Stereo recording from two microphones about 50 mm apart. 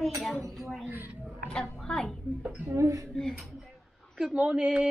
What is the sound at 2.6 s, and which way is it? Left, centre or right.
Speech, right.